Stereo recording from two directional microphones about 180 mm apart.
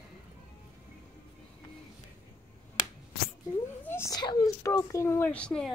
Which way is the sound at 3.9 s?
15° left (ahead or behind).